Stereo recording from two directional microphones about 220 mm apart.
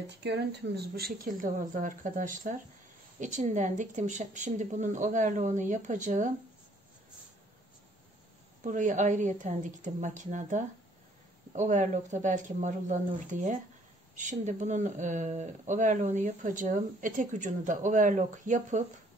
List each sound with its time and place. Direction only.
0.2 s speech: 50° right (ahead or behind); by 6.3 s 35° right (ahead or behind)
8.6 s speech: 35° right (ahead or behind)